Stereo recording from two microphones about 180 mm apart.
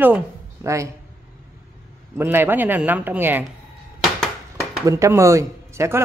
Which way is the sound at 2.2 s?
10° right (ahead or behind).